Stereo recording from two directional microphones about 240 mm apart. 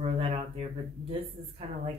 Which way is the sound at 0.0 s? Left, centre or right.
Right.